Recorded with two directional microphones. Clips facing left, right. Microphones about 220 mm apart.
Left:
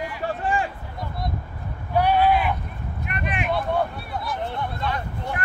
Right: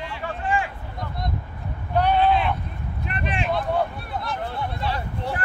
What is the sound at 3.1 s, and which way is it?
Vehicle, 30° right (ahead or behind).